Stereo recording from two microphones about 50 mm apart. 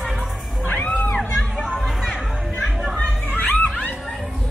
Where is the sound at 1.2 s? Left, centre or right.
Left.